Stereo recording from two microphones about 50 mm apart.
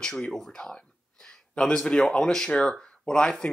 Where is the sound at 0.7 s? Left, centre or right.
Centre.